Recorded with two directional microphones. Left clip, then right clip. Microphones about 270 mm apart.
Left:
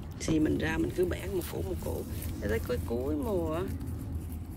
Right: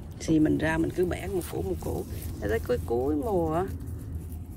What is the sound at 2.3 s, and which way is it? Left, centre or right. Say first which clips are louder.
Speech: right 5 dB; centre.